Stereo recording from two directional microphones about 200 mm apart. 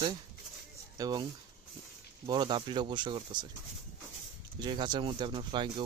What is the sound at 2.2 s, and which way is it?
Speech, 20° right (ahead or behind).